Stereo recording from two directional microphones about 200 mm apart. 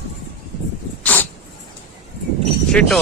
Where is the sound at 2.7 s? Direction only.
5° left (ahead or behind).